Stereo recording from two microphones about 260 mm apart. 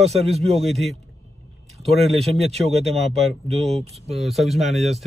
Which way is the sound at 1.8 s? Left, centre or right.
Right.